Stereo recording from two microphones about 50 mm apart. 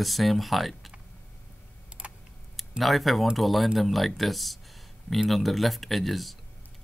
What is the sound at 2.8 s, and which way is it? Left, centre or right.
Speech, centre.